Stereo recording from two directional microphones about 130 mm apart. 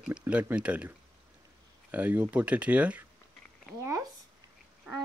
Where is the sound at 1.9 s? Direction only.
10° right (ahead or behind).